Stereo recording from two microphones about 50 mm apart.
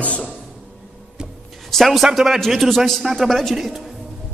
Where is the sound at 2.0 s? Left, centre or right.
Centre.